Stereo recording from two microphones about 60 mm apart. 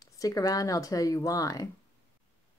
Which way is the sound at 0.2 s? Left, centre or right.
Left.